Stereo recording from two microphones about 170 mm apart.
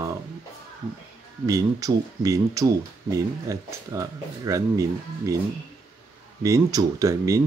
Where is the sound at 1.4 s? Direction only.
20° right (ahead or behind).